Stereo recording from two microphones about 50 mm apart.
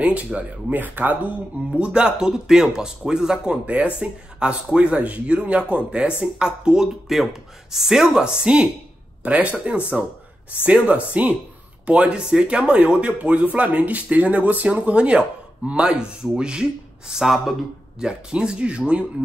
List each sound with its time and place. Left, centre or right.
0.0 s speech: right
1.8 s speech: centre
3.6 s speech: right
9.2 s speech: right
17.1 s speech: centre
17.9 s speech: centre